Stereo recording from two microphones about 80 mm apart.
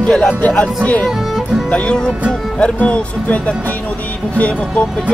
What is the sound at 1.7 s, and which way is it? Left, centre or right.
Speech, centre.